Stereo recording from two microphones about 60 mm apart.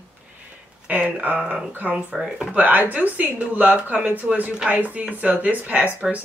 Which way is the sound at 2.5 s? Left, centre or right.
Right.